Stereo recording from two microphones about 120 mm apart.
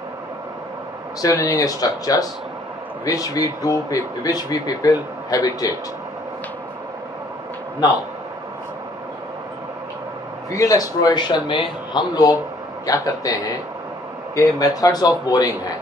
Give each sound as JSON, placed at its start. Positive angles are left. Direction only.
{"t": 1.3, "sound": "speech", "side_deg": 25}
{"t": 10.5, "sound": "speech", "side_deg": 30}